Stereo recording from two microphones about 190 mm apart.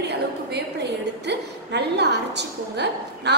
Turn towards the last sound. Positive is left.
turn(degrees=-60)  # may be behind; listen again after turning